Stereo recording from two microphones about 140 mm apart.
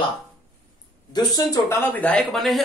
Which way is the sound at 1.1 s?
25° left (ahead or behind).